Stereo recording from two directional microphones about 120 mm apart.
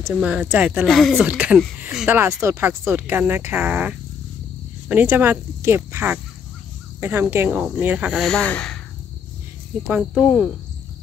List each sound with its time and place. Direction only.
0.1 s speech: 10° right (ahead or behind)
0.8 s speech: centre (ahead or behind)
1.2 s speech: 10° right (ahead or behind)
2.1 s speech: 20° right (ahead or behind)
8.2 s speech: 5° left (ahead or behind)
10.1 s speech: 10° left (ahead or behind)